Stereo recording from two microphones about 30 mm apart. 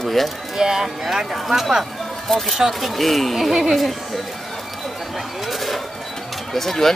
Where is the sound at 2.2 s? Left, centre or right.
Centre.